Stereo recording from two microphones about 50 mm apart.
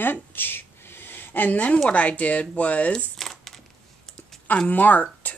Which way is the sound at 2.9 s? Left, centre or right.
Centre.